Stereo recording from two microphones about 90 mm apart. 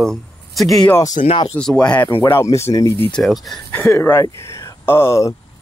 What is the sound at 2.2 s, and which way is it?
Speech, 30° left (ahead or behind).